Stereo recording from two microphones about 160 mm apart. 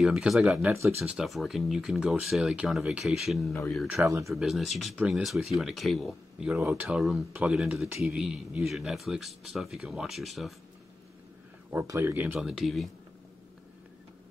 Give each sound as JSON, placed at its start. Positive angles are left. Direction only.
{"t": 0.0, "sound": "speech", "side_deg": -5}
{"t": 0.7, "sound": "speech", "side_deg": -15}
{"t": 1.1, "sound": "speech", "side_deg": 0}
{"t": 4.0, "sound": "speech", "side_deg": -20}
{"t": 4.3, "sound": "speech", "side_deg": 0}
{"t": 11.7, "sound": "speech", "side_deg": -15}